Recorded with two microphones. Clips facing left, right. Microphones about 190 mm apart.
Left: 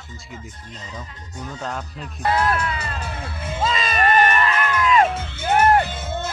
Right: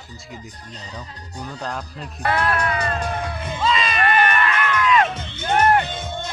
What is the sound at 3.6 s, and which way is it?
Music, 45° left (ahead or behind).